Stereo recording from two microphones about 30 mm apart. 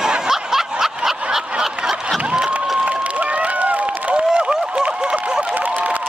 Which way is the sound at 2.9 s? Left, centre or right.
Right.